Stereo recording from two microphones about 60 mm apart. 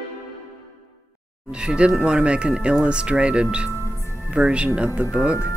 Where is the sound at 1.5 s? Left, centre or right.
Centre.